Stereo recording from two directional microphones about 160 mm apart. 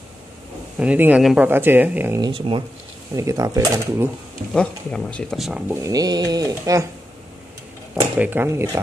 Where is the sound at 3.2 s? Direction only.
20° right (ahead or behind).